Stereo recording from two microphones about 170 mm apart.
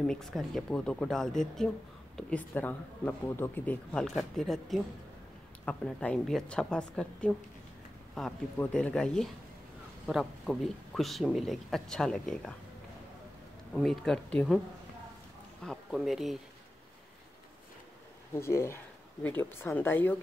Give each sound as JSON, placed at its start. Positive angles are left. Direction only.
{"t": 0.0, "sound": "speech", "side_deg": 5}
{"t": 13.7, "sound": "speech", "side_deg": 0}
{"t": 15.6, "sound": "speech", "side_deg": 0}
{"t": 18.3, "sound": "speech", "side_deg": 15}